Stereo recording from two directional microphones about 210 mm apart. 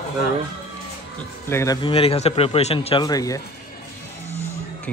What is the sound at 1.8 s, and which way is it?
Speech, 25° left (ahead or behind).